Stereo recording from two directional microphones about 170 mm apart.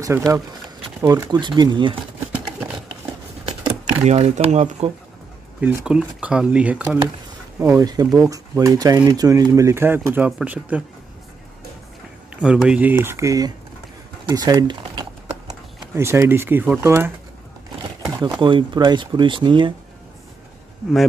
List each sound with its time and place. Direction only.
0.0 s speech: 20° right (ahead or behind)
4.0 s speech: 40° right (ahead or behind)
5.6 s speech: 10° right (ahead or behind)
7.7 s speech: 20° right (ahead or behind)
12.4 s speech: 5° right (ahead or behind); by 14.8 s 25° right (ahead or behind)
15.9 s speech: 15° right (ahead or behind)
18.2 s speech: 25° right (ahead or behind)